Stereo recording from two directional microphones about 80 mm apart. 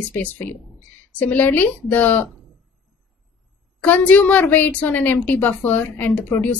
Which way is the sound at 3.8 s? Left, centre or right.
Left.